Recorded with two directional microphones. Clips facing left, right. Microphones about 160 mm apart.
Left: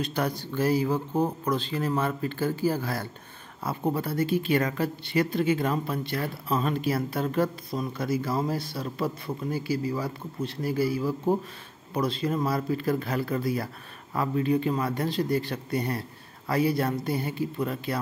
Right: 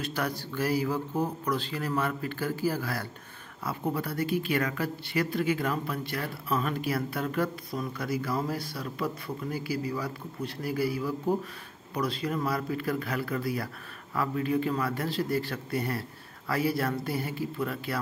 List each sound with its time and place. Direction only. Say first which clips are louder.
0.0 s speech: left 3 dB; 20° left (ahead or behind)